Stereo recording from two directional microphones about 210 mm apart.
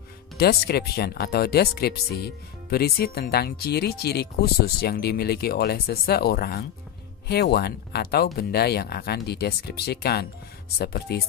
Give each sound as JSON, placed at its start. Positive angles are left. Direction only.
{"t": 0.4, "sound": "speech", "side_deg": 50}